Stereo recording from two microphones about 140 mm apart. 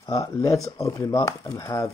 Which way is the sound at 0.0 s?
25° left (ahead or behind).